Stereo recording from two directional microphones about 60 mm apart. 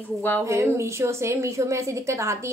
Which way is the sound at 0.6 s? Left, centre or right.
Right.